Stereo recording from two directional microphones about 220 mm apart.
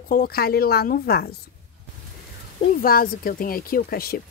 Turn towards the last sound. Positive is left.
turn(degrees=45)  # may be behind; listen again after turning